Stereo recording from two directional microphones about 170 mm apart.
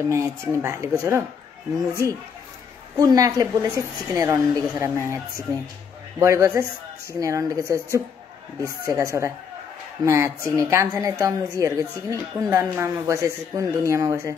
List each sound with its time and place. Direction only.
0.0 s speech: 15° right (ahead or behind)
3.0 s a woman's voice: 20° right (ahead or behind)